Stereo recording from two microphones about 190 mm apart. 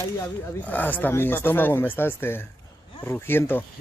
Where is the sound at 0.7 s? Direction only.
10° left (ahead or behind).